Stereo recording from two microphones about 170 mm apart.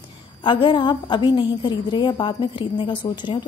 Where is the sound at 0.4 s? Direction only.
30° left (ahead or behind).